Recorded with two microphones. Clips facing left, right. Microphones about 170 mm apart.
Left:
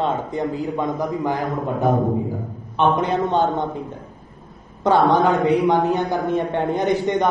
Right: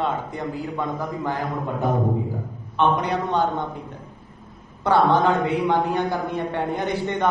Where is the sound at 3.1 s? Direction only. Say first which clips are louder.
Left 3 dB; 20° left (ahead or behind).